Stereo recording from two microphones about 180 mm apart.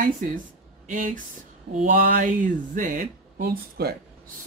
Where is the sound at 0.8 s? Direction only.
50° right (ahead or behind).